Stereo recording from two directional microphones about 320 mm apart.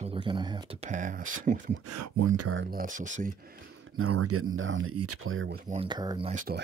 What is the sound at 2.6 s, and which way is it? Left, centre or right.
Speech, right.